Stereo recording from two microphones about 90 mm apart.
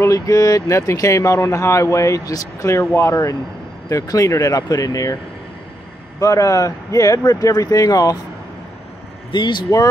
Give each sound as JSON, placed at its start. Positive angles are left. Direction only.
{"t": 0.0, "sound": "speech", "side_deg": 40}
{"t": 6.1, "sound": "speech", "side_deg": 35}
{"t": 9.3, "sound": "speech", "side_deg": 55}